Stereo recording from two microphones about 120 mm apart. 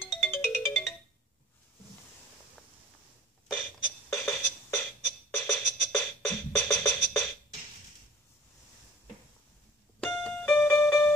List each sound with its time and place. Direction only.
0.2 s music: 15° left (ahead or behind)
4.1 s music: 20° left (ahead or behind)
9.9 s music: 10° left (ahead or behind)